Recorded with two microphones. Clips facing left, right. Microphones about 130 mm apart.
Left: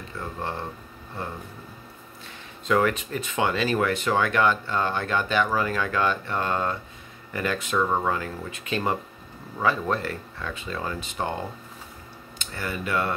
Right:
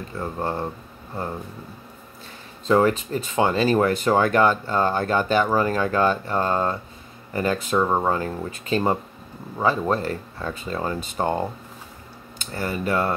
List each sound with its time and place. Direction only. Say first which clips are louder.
0.2 s speech: right 5 dB; 40° right (ahead or behind)
2.6 s speech: right 4 dB; 30° right (ahead or behind)
12.4 s speech: right 5 dB; 40° right (ahead or behind)